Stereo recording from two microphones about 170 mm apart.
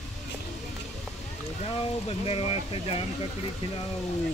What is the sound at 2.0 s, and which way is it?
Speech, 35° left (ahead or behind).